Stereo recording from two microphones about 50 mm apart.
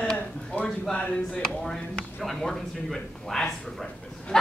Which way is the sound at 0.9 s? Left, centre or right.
Left.